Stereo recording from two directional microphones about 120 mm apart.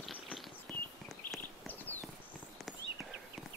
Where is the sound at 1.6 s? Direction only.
15° left (ahead or behind).